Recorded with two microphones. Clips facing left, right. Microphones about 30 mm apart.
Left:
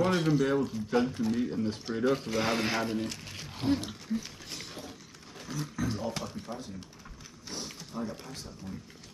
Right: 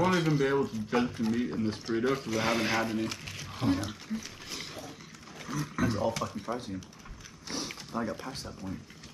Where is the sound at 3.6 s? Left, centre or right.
Left.